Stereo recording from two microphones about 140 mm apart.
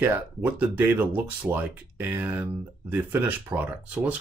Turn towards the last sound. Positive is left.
turn(degrees=-10)  # may be behind; listen again after turning